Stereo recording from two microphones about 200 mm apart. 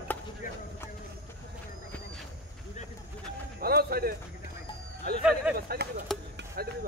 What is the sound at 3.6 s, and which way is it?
Music, 50° right (ahead or behind).